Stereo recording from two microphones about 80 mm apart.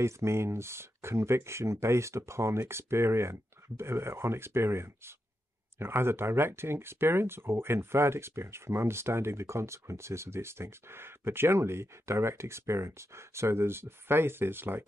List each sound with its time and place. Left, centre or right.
0.0 s speech: right